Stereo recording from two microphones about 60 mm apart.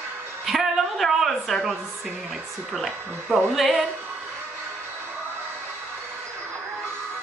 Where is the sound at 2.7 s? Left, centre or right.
Centre.